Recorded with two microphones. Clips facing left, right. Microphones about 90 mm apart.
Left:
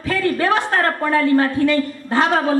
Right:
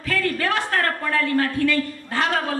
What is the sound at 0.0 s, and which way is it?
A woman's voice, 20° left (ahead or behind).